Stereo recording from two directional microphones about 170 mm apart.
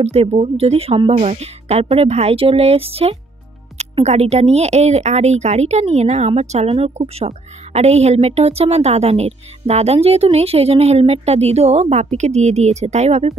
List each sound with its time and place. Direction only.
0.0 s speech: 35° right (ahead or behind)